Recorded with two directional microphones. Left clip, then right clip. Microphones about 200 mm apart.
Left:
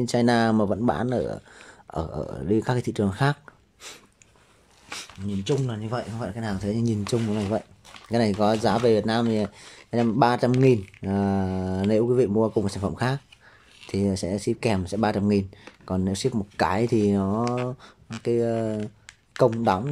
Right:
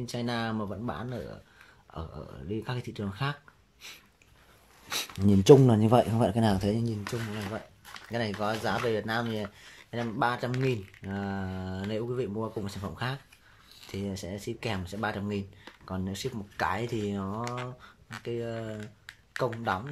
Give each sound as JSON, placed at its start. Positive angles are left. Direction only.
{"t": 0.0, "sound": "speech", "side_deg": 30}
{"t": 4.9, "sound": "speech", "side_deg": -25}
{"t": 6.8, "sound": "speech", "side_deg": 15}
{"t": 18.8, "sound": "a sound", "side_deg": 10}